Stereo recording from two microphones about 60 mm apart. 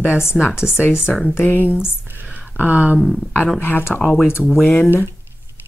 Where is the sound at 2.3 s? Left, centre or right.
Right.